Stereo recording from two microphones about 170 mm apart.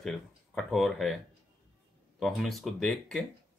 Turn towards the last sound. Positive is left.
turn(degrees=5)  # may be behind; listen again after turning